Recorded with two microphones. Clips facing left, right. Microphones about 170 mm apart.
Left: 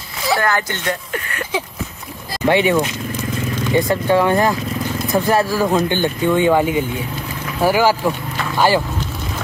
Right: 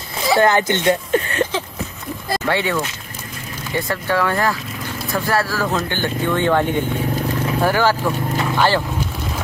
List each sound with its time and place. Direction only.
0.4 s speech: 20° right (ahead or behind)
2.4 s speech: 20° left (ahead or behind)